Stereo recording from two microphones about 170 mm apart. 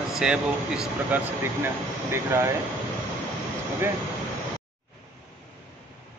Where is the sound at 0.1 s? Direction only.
5° right (ahead or behind).